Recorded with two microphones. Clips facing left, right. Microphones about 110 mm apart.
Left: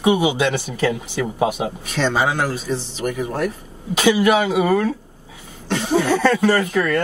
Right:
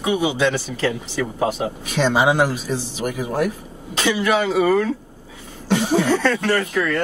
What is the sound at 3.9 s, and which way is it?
Speech, 10° left (ahead or behind).